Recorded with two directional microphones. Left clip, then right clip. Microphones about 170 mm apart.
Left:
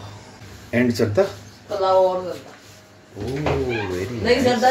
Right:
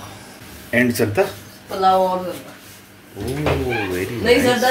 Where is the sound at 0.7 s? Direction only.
15° left (ahead or behind).